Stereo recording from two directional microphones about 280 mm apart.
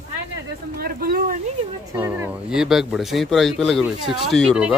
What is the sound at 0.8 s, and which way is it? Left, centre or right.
Speech, right.